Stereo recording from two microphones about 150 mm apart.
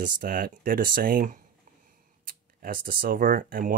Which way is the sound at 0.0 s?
70° right (ahead or behind).